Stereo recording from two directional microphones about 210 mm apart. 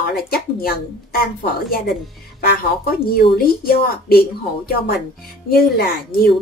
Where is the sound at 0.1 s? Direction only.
45° left (ahead or behind).